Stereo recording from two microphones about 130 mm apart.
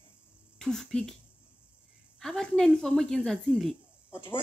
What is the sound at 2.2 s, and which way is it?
Speech, 5° left (ahead or behind).